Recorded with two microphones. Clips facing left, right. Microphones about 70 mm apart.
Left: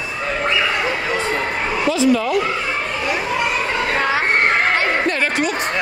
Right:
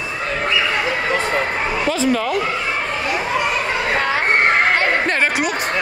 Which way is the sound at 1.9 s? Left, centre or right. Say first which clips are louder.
Left 5 dB; right.